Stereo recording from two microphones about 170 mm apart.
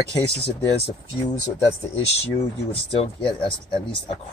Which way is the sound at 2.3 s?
35° left (ahead or behind).